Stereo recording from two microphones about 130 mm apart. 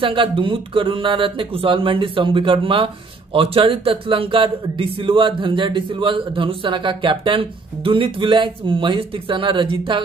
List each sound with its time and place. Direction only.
0.0 s a man's voice: 40° right (ahead or behind)